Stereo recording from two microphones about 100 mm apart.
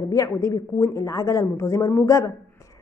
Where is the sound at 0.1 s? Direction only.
30° left (ahead or behind).